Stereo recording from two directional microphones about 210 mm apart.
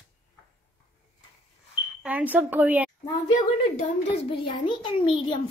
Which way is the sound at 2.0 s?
5° right (ahead or behind).